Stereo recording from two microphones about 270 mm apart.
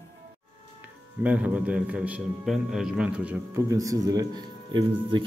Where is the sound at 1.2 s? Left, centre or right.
Centre.